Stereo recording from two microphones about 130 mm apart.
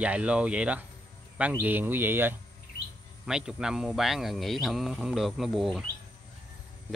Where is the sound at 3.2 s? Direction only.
5° right (ahead or behind).